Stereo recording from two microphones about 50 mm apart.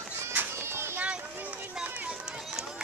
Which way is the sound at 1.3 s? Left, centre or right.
Right.